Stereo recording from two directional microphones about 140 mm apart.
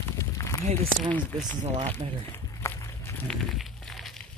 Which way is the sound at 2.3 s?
20° left (ahead or behind).